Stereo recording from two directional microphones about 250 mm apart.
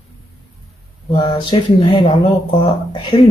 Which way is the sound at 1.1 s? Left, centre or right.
Left.